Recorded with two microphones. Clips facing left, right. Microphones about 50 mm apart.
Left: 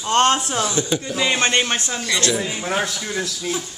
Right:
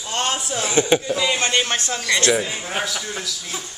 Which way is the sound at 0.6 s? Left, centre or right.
Right.